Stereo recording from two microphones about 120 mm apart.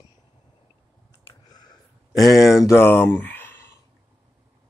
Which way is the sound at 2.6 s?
20° left (ahead or behind).